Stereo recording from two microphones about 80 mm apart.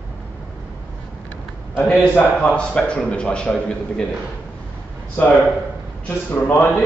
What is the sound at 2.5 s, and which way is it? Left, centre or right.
A man's voice, centre.